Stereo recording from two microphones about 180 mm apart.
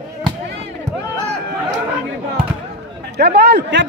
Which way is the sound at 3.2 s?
65° right (ahead or behind).